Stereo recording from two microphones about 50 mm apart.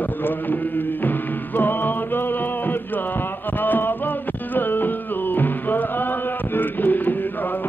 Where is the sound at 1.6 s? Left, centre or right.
Left.